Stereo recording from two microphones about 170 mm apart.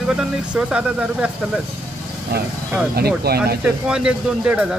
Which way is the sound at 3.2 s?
65° right (ahead or behind).